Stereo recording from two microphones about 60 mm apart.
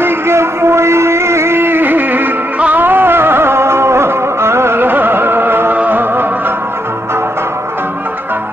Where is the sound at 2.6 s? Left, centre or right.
Right.